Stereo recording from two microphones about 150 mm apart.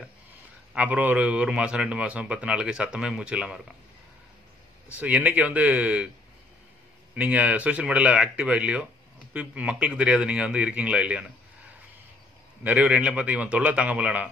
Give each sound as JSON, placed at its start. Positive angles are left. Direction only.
{"t": 0.7, "sound": "a man's voice", "side_deg": -10}
{"t": 4.9, "sound": "a man's voice", "side_deg": -10}
{"t": 7.2, "sound": "a man's voice", "side_deg": -10}
{"t": 12.6, "sound": "a man's voice", "side_deg": -10}